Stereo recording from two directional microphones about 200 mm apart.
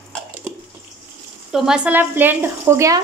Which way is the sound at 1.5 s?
5° right (ahead or behind).